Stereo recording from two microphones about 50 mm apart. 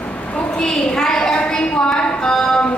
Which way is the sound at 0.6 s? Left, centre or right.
Centre.